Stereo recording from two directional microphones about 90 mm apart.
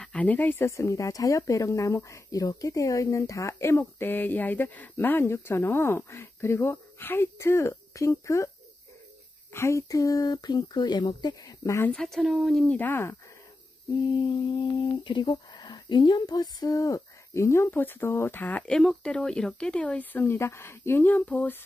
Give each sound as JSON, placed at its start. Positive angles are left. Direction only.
{"t": 0.0, "sound": "speech", "side_deg": 15}
{"t": 0.7, "sound": "speech", "side_deg": 35}
{"t": 9.5, "sound": "speech", "side_deg": 30}
{"t": 12.0, "sound": "a woman's voice", "side_deg": 0}
{"t": 12.6, "sound": "speech", "side_deg": 20}
{"t": 14.1, "sound": "humming", "side_deg": 65}
{"t": 15.3, "sound": "speech", "side_deg": 50}